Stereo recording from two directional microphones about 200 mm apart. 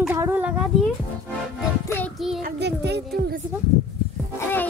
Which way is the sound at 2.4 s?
55° right (ahead or behind).